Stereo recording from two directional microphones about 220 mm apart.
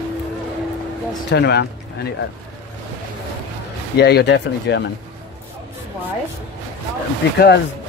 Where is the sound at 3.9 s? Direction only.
50° left (ahead or behind).